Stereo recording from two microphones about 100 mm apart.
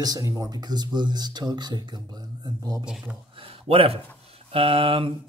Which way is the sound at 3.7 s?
75° right (ahead or behind).